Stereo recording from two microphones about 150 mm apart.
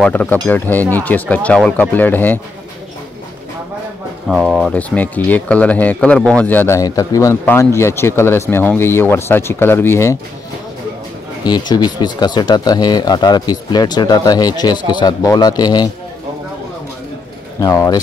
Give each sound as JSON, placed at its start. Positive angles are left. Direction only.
{"t": 0.0, "sound": "speech", "side_deg": 10}
{"t": 4.3, "sound": "speech", "side_deg": -5}
{"t": 4.7, "sound": "speech", "side_deg": 10}
{"t": 11.4, "sound": "speech", "side_deg": 30}
{"t": 17.6, "sound": "speech", "side_deg": 20}